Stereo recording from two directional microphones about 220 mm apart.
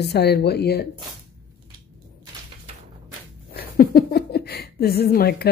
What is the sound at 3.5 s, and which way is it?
Speech, 45° left (ahead or behind).